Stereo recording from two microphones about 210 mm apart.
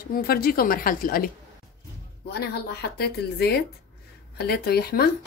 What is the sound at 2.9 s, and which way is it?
A woman's voice, 50° left (ahead or behind).